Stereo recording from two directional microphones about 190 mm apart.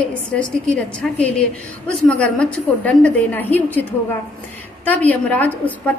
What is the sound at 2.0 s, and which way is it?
A woman's voice, 5° left (ahead or behind).